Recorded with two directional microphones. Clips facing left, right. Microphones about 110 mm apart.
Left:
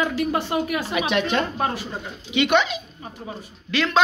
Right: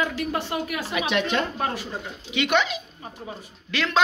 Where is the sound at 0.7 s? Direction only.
30° left (ahead or behind).